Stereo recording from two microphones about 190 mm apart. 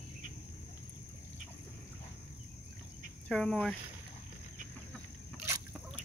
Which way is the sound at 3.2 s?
5° left (ahead or behind).